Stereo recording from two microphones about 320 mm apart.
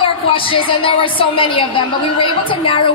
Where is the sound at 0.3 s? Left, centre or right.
Centre.